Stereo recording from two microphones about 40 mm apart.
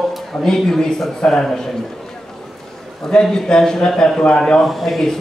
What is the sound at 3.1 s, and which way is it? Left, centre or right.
A man's voice, left.